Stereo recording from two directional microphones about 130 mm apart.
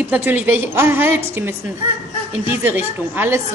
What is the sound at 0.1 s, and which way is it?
A woman's voice, 15° right (ahead or behind).